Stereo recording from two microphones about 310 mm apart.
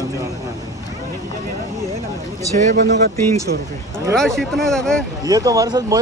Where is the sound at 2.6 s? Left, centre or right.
Right.